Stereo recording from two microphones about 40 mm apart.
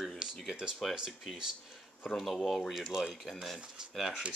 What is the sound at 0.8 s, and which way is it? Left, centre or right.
Speech, centre.